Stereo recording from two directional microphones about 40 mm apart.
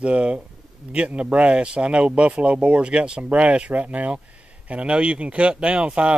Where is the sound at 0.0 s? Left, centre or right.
Right.